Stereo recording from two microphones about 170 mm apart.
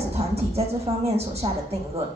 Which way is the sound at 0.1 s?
40° right (ahead or behind).